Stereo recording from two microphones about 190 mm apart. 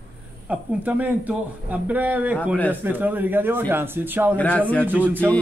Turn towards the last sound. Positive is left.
turn(degrees=-10)  # may be behind; listen again after turning